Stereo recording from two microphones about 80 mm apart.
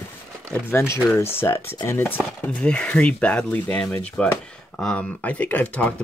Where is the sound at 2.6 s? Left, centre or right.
Centre.